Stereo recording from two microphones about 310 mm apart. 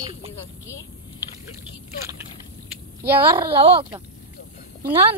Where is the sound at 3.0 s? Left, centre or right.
Centre.